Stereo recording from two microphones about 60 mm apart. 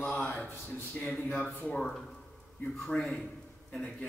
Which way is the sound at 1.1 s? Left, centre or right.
Centre.